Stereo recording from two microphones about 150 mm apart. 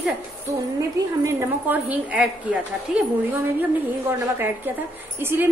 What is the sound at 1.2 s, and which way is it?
A woman's voice, 10° right (ahead or behind).